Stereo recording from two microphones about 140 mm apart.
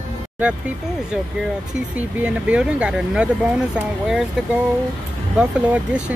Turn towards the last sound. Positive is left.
turn(degrees=-10)  # may be behind; listen again after turning